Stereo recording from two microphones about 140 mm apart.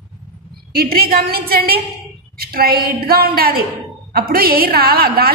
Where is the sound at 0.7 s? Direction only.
90° right.